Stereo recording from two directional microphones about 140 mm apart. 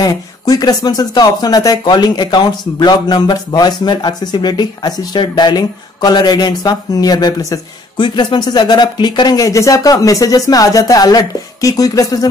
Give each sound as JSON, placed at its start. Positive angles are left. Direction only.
{"t": 0.0, "sound": "speech", "side_deg": 25}